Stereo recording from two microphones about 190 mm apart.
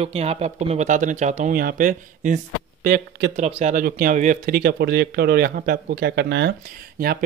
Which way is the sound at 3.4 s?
35° right (ahead or behind).